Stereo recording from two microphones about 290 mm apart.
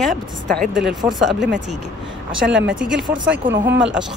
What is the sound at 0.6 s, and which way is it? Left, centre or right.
Speech, centre.